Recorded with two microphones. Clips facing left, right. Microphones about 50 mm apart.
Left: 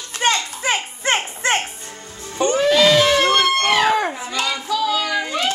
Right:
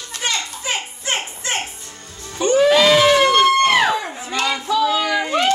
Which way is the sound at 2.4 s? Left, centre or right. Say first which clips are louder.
Right 2 dB; centre.